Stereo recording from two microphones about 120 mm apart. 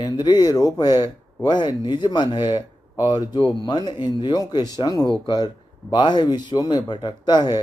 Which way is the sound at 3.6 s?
35° left (ahead or behind).